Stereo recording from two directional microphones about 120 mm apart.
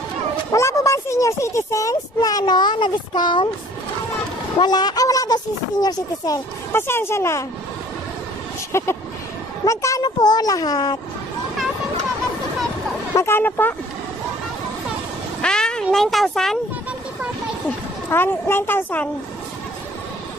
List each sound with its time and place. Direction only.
0.5 s a child's voice: 25° left (ahead or behind); by 3.4 s 40° left (ahead or behind)
4.6 s speech: 35° left (ahead or behind)
6.7 s a child's voice: 20° left (ahead or behind)
8.7 s a child's voice: 25° left (ahead or behind)
13.1 s speech: 20° left (ahead or behind)
15.4 s a sound: 5° left (ahead or behind)
17.6 s a woman's voice: 15° left (ahead or behind)